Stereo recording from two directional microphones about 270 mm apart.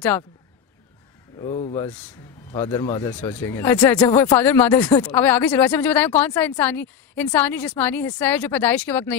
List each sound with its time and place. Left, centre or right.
1.4 s speech: centre
1.9 s speech: centre